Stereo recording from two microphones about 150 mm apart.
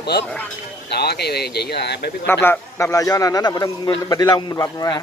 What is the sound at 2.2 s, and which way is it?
A man's voice, 15° left (ahead or behind).